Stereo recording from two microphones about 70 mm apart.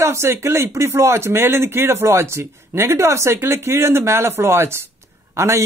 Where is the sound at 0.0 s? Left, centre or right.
Right.